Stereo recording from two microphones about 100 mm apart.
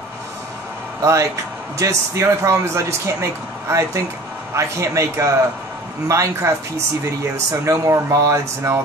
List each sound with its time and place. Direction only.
1.0 s speech: 30° right (ahead or behind)
7.6 s speech: 35° right (ahead or behind)